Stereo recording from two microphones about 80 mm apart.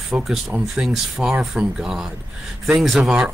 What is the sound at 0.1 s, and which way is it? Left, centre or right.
A man's voice, centre.